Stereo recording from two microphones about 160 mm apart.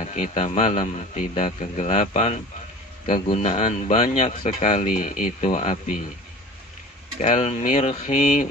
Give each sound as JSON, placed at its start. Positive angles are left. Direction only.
{"t": 0.0, "sound": "speech", "side_deg": 45}
{"t": 7.2, "sound": "speech", "side_deg": 45}